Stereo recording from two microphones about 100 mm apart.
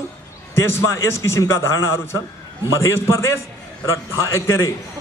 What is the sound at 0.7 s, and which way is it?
A man's voice, 30° left (ahead or behind).